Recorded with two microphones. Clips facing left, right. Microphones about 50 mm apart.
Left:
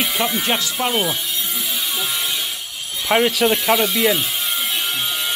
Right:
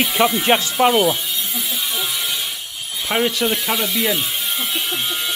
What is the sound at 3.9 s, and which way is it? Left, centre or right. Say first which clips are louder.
Speech: left 3 dB; left.